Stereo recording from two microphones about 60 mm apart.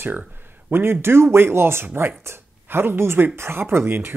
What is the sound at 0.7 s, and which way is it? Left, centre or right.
Speech, right.